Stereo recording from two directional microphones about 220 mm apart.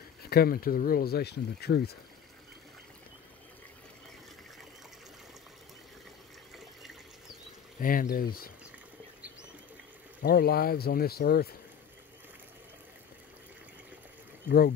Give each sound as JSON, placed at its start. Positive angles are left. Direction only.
{"t": 0.3, "sound": "speech", "side_deg": 45}
{"t": 6.5, "sound": "water", "side_deg": 0}
{"t": 7.8, "sound": "speech", "side_deg": 40}
{"t": 10.2, "sound": "speech", "side_deg": 45}